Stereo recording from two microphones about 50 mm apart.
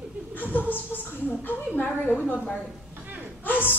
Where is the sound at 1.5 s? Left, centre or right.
Left.